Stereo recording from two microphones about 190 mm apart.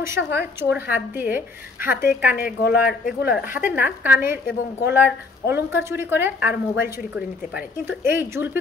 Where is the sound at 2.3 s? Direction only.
55° left (ahead or behind).